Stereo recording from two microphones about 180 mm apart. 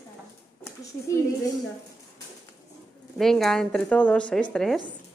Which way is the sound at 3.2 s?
Centre (ahead or behind).